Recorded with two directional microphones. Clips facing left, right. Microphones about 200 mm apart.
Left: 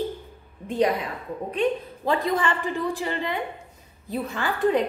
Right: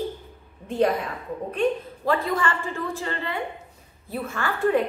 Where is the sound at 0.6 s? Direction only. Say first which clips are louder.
Even; 15° left (ahead or behind).